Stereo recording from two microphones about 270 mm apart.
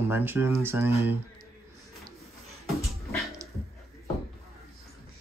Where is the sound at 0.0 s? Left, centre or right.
Centre.